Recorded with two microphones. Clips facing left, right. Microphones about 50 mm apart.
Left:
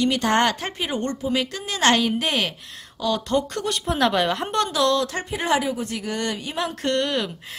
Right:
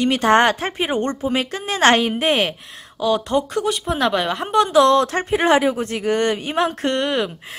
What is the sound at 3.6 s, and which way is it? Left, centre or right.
Speech, centre.